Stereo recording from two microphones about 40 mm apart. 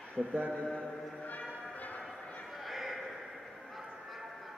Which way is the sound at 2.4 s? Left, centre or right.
Centre.